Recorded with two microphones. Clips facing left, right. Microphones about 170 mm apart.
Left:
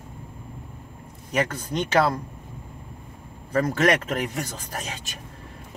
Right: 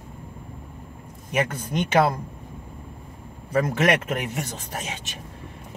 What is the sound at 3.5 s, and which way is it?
Speech, 5° right (ahead or behind).